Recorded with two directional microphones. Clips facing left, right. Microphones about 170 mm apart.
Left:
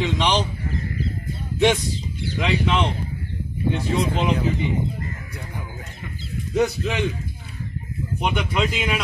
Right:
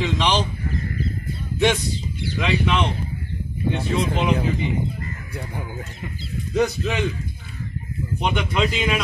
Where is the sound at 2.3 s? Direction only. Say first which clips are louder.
Even; 20° left (ahead or behind).